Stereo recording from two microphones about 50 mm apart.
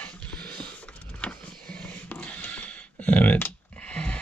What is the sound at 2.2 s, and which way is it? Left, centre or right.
Clicking, left.